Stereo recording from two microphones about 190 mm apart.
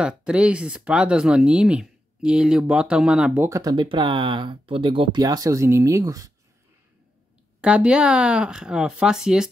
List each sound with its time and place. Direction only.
0.0 s speech: 5° right (ahead or behind)
3.4 s speech: 15° right (ahead or behind)
7.6 s speech: 5° right (ahead or behind)